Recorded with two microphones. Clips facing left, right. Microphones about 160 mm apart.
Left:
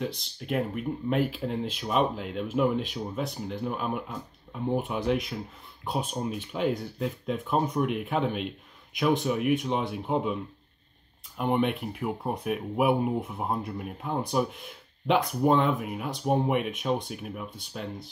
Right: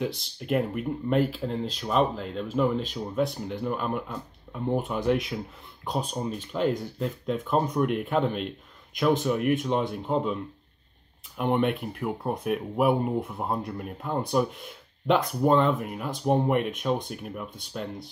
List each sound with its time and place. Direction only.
0.0 s speech: centre (ahead or behind)